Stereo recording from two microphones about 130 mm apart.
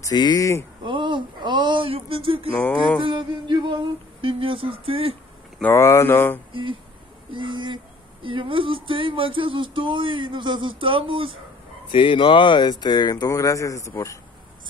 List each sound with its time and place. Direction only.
0.0 s speech: 30° left (ahead or behind)
0.8 s speech: 35° right (ahead or behind)
5.6 s speech: 20° left (ahead or behind)
6.5 s speech: 40° right (ahead or behind)
11.9 s speech: 40° left (ahead or behind); by 14.1 s 25° left (ahead or behind)